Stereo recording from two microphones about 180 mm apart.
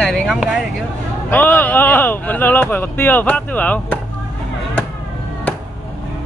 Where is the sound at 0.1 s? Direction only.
Centre (ahead or behind).